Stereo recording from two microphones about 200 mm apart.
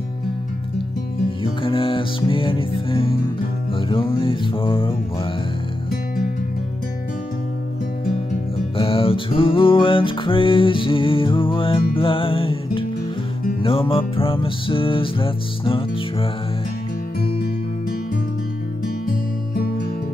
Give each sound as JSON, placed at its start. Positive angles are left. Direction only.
{"t": 1.4, "sound": "music", "side_deg": 25}
{"t": 8.7, "sound": "music", "side_deg": 25}